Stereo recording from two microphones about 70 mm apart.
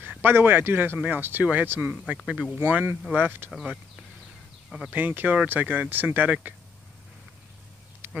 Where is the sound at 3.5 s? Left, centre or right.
Centre.